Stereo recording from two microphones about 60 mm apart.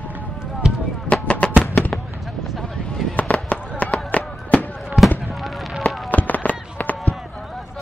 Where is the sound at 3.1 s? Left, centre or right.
Centre.